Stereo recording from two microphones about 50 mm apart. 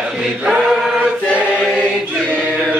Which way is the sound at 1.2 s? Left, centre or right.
Right.